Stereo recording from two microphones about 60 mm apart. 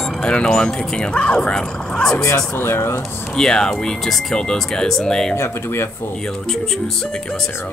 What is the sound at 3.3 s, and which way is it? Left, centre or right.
Speech, centre.